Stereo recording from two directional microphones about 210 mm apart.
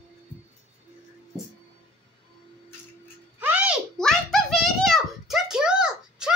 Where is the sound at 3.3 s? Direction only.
5° right (ahead or behind).